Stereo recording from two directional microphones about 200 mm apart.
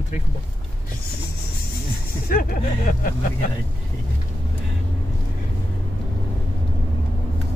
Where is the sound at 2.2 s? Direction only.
45° left (ahead or behind).